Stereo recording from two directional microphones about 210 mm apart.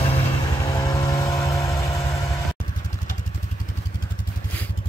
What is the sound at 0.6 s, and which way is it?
Vehicle, 15° left (ahead or behind).